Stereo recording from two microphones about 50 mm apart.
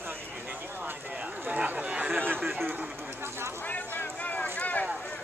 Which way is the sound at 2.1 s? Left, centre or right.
Right.